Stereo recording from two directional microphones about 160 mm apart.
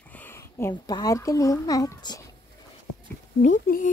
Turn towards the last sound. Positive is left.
turn(degrees=60)  # may be behind; listen again after turning